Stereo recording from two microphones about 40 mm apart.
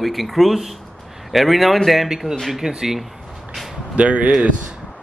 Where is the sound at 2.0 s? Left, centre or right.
Centre.